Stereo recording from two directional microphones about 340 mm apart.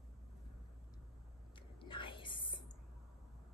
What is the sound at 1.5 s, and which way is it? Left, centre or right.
Whispering, centre.